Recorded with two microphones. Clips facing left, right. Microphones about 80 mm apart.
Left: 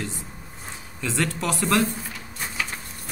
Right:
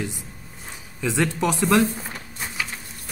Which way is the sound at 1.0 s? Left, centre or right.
Centre.